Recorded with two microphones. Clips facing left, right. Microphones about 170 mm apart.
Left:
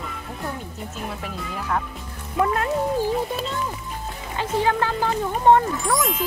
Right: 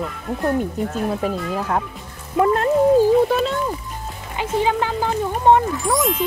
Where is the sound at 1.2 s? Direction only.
40° right (ahead or behind).